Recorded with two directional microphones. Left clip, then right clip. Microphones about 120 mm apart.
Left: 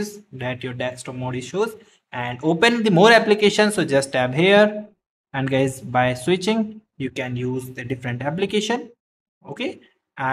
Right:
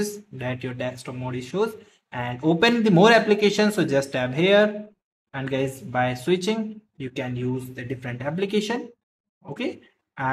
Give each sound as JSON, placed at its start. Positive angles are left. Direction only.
{"t": 0.4, "sound": "speech", "side_deg": 15}